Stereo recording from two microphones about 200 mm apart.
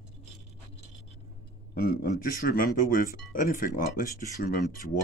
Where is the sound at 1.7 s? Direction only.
50° left (ahead or behind).